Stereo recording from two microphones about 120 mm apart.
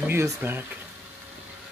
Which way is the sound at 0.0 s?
20° right (ahead or behind).